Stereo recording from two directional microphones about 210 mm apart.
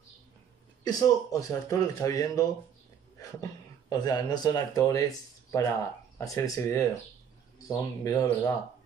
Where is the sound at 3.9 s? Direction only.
20° left (ahead or behind).